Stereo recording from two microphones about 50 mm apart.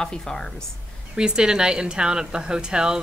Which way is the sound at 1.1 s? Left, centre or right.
Centre.